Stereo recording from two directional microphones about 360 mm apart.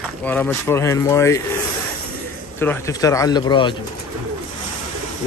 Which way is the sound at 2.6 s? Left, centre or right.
Centre.